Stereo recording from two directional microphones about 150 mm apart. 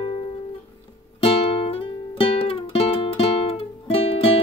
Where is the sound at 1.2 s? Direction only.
40° left (ahead or behind).